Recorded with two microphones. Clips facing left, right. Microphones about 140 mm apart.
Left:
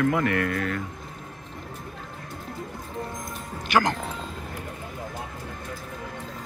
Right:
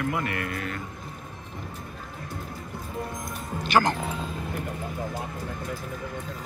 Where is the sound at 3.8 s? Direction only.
5° right (ahead or behind).